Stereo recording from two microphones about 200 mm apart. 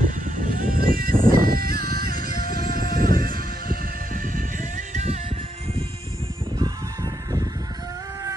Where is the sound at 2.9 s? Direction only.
45° right (ahead or behind).